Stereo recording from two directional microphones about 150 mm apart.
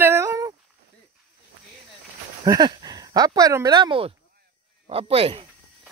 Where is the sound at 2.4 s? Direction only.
25° right (ahead or behind).